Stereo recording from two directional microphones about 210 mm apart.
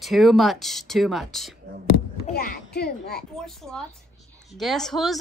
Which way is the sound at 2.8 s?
50° left (ahead or behind).